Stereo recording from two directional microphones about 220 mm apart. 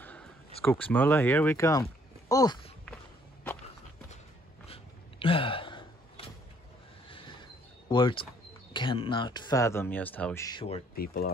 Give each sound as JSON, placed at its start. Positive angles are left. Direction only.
{"t": 0.0, "sound": "a sound", "side_deg": 5}
{"t": 0.7, "sound": "speech", "side_deg": 10}
{"t": 5.2, "sound": "gasp", "side_deg": 25}
{"t": 7.1, "sound": "train", "side_deg": 20}
{"t": 7.9, "sound": "speech", "side_deg": 20}
{"t": 11.0, "sound": "speech", "side_deg": 45}